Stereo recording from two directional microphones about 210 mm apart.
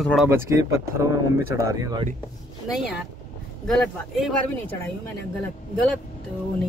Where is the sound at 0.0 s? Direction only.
Centre (ahead or behind).